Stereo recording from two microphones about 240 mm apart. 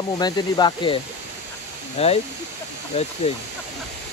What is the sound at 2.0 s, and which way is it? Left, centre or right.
Speech, left.